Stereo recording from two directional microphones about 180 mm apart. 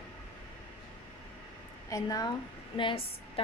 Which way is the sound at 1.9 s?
20° left (ahead or behind).